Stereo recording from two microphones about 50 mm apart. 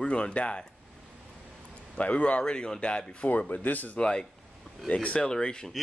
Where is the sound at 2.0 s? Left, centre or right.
Left.